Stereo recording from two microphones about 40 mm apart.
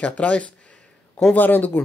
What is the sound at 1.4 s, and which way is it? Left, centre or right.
Speech, left.